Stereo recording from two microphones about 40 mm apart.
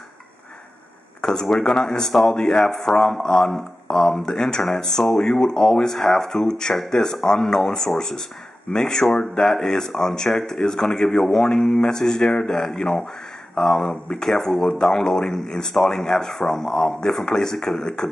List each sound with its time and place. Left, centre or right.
1.2 s speech: centre